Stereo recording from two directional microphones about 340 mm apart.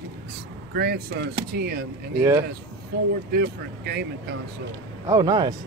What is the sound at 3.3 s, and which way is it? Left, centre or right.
Speech, right.